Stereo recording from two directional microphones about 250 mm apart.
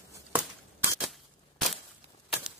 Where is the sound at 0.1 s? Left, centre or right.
Centre.